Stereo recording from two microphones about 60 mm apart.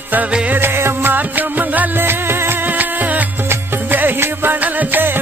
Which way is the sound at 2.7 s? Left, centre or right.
Right.